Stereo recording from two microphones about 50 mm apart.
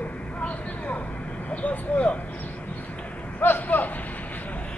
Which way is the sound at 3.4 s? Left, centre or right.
Left.